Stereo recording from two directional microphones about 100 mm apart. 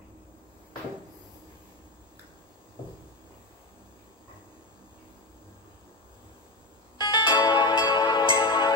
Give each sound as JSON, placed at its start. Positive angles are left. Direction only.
{"t": 7.0, "sound": "music", "side_deg": 45}